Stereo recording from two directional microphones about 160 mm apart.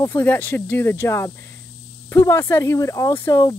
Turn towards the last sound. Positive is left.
turn(degrees=20)  # may be behind; listen again after turning